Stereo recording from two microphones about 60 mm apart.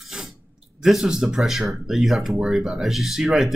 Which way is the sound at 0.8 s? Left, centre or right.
Centre.